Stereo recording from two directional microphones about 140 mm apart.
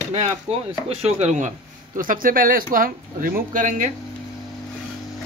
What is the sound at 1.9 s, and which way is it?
Speech, 85° right.